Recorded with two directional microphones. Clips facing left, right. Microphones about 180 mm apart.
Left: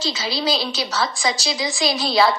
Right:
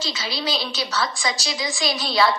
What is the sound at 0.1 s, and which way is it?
A woman's voice, 30° left (ahead or behind).